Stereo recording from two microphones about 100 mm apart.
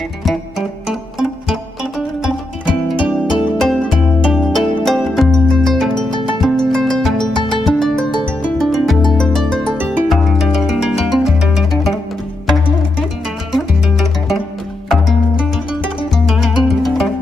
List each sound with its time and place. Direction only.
2.2 s music: 5° right (ahead or behind)
5.9 s music: 50° left (ahead or behind)
6.5 s music: 5° left (ahead or behind)
13.5 s music: centre (ahead or behind)